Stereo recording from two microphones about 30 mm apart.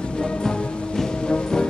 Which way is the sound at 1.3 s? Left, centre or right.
Left.